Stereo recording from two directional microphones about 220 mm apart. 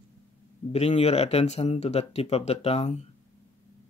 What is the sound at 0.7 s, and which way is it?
Speech, 30° left (ahead or behind).